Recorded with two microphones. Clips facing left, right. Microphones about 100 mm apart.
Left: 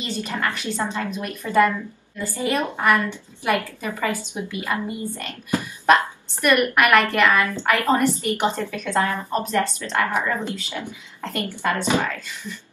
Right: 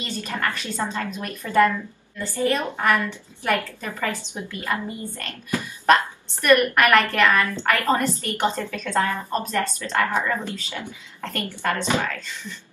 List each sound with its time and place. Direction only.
0.2 s a woman's voice: 15° left (ahead or behind)